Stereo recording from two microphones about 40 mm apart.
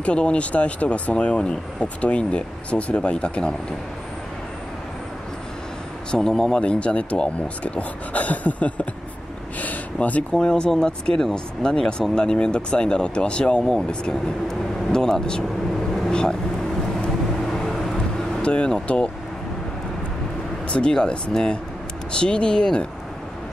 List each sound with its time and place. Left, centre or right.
0.0 s speech: left
6.1 s speech: centre
6.6 s speech: left
9.9 s speech: left
10.3 s speech: centre
16.1 s vehicle: left
17.5 s vehicle: centre
18.4 s speech: left
20.6 s speech: left